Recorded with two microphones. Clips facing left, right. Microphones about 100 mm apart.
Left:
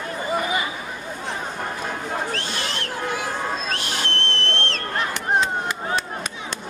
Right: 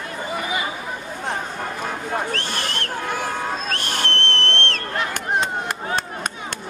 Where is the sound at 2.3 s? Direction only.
55° right (ahead or behind).